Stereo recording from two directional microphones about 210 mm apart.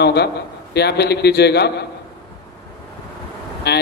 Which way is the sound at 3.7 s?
50° left (ahead or behind).